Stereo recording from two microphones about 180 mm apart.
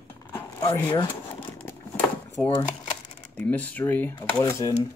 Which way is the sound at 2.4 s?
5° left (ahead or behind).